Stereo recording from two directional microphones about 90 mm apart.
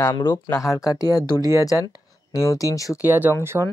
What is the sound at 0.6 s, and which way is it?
Speech, 40° left (ahead or behind).